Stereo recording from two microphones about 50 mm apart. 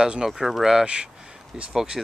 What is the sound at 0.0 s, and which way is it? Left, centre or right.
Speech, centre.